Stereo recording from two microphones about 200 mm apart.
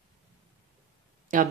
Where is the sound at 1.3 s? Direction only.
40° right (ahead or behind).